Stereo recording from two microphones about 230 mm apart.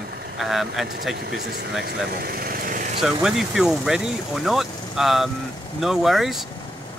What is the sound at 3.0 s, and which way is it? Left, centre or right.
Speech, centre.